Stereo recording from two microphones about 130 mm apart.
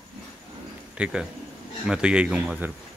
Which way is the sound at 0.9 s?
10° right (ahead or behind).